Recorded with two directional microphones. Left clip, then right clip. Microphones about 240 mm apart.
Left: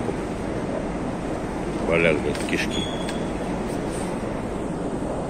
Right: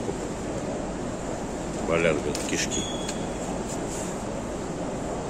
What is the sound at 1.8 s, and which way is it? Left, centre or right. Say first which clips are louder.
Speech: left 3 dB; centre.